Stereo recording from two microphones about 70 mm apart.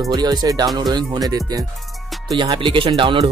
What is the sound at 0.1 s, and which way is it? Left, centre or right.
Speech, right.